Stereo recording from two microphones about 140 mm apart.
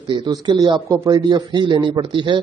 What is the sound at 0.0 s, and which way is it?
A man's voice, 30° right (ahead or behind).